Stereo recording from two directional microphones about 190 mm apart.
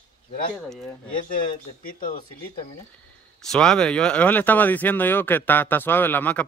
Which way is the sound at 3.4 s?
5° left (ahead or behind).